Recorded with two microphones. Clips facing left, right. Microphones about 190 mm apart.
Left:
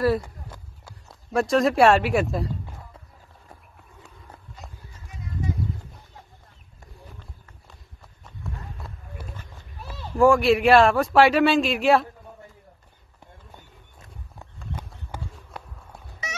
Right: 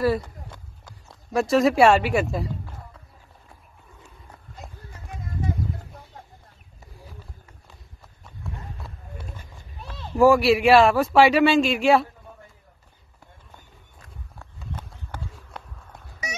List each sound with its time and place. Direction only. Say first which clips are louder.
0.0 s a sound: even; centre (ahead or behind)
4.9 s clip-clop: right 3 dB; 55° right (ahead or behind)
8.2 s run: even; centre (ahead or behind)
10.1 s a man's voice: right 1 dB; 5° right (ahead or behind)
15.3 s run: left 1 dB; centre (ahead or behind)